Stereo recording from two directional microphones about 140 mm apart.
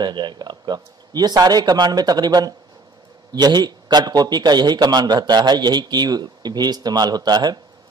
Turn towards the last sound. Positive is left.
turn(degrees=-30)  # may be behind; listen again after turning